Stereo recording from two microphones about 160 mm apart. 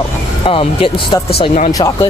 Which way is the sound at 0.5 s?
35° left (ahead or behind).